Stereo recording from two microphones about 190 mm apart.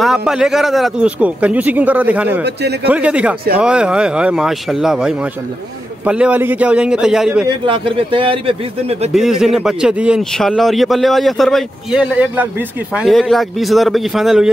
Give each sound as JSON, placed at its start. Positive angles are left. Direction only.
{"t": 0.0, "sound": "a man's voice", "side_deg": -5}
{"t": 2.4, "sound": "a man's voice", "side_deg": -60}
{"t": 2.9, "sound": "a man's voice", "side_deg": -5}
{"t": 7.4, "sound": "speech", "side_deg": -25}
{"t": 9.1, "sound": "a man's voice", "side_deg": 0}